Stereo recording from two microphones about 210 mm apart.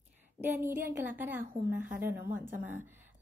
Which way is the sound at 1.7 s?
10° right (ahead or behind).